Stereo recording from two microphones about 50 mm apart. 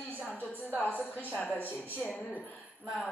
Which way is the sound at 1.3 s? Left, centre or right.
Left.